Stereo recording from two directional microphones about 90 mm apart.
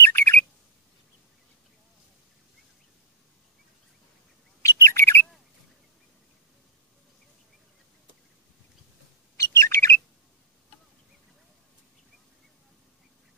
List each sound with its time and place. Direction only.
0.0 s bird: 25° left (ahead or behind)
4.6 s bird: 30° left (ahead or behind)
9.4 s bird: 30° left (ahead or behind)